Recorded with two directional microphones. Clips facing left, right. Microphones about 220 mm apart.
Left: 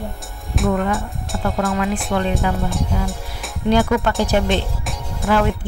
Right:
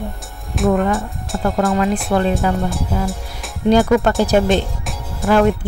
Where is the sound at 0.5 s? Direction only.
Centre (ahead or behind).